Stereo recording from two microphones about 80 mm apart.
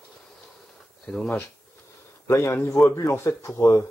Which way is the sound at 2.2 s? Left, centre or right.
Left.